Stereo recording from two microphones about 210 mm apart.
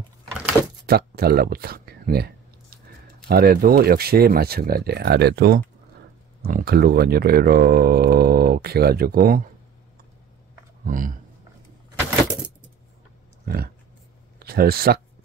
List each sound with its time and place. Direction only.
0.8 s a sound: 50° right (ahead or behind)
3.3 s speech: 45° right (ahead or behind)
10.9 s speech: 40° right (ahead or behind)
14.4 s speech: 45° right (ahead or behind)